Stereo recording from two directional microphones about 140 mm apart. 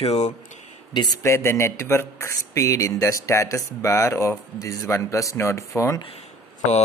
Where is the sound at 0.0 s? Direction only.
45° left (ahead or behind).